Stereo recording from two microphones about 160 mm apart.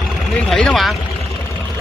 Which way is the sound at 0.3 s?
5° left (ahead or behind).